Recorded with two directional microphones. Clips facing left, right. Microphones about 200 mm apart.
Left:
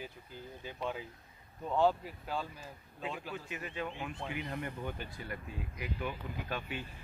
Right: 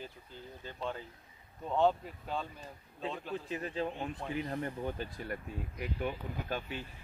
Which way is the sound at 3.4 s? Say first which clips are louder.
Right 6 dB; 35° right (ahead or behind).